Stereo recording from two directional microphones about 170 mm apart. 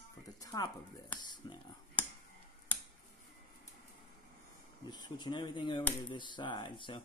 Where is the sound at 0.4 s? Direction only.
20° left (ahead or behind).